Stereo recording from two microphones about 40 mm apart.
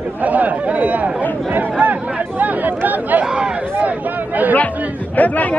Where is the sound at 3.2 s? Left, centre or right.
Right.